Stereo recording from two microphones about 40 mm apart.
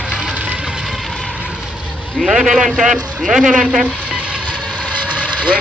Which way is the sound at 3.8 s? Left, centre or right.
Right.